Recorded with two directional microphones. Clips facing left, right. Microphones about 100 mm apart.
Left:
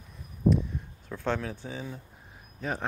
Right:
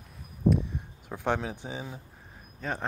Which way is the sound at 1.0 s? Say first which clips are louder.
Right 1 dB; 15° right (ahead or behind).